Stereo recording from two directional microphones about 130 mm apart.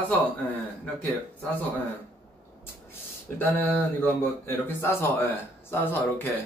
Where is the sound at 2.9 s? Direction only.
15° left (ahead or behind).